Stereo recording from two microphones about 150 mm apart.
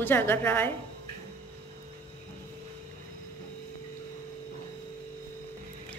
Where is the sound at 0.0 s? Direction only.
15° left (ahead or behind).